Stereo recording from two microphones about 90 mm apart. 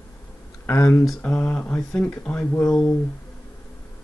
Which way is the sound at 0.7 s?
30° left (ahead or behind).